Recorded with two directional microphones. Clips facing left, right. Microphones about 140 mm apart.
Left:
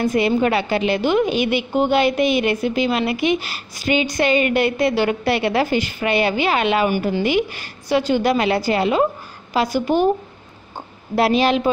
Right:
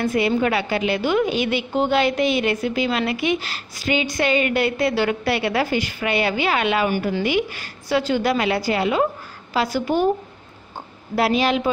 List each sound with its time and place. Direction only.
0.2 s a woman's voice: 25° left (ahead or behind)
2.5 s a woman's voice: 25° left (ahead or behind)
9.5 s a woman's voice: 20° left (ahead or behind)
11.1 s a woman's voice: 30° left (ahead or behind)